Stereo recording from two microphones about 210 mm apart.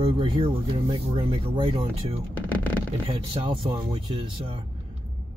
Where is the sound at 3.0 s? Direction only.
25° right (ahead or behind).